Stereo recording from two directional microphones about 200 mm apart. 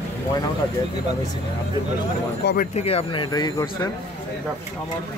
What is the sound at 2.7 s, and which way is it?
Speech, 30° left (ahead or behind).